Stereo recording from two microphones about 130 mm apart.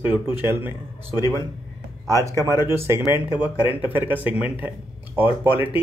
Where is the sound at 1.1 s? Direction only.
25° left (ahead or behind).